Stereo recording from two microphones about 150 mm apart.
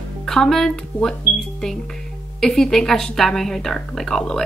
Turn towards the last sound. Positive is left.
turn(degrees=0)  # may be behind; listen again after turning